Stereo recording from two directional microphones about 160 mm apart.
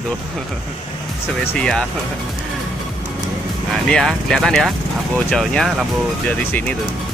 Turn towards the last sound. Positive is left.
turn(degrees=0)  # may be behind; listen again after turning